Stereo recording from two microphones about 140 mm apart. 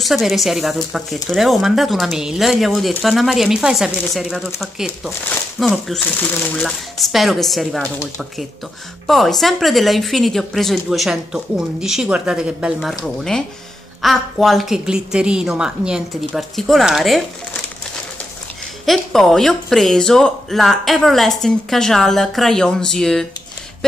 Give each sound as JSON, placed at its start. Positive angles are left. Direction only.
{"t": 0.0, "sound": "speech", "side_deg": 0}
{"t": 18.9, "sound": "speech", "side_deg": 0}